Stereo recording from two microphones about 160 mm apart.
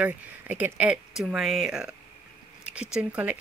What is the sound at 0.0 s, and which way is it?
Speech, 10° right (ahead or behind).